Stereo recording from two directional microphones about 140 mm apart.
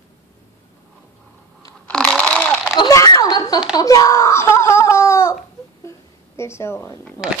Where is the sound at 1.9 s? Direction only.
5° left (ahead or behind).